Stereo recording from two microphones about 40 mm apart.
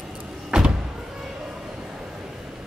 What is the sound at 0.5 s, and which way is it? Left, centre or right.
Power windows, right.